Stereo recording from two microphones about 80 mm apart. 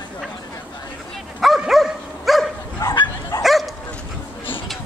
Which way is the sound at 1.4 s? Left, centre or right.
Centre.